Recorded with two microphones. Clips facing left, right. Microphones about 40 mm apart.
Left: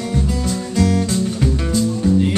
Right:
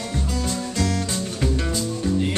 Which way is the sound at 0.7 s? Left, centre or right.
Centre.